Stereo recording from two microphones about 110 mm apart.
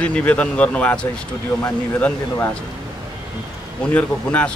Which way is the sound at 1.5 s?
35° left (ahead or behind).